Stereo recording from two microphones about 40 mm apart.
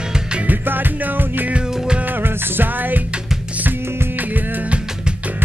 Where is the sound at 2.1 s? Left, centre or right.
Right.